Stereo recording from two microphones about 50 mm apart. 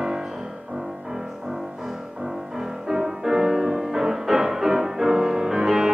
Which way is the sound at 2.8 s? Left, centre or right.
Centre.